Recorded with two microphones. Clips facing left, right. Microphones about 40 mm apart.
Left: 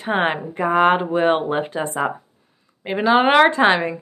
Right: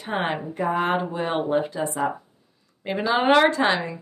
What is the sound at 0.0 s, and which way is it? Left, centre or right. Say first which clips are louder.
Speech: left 6 dB; left.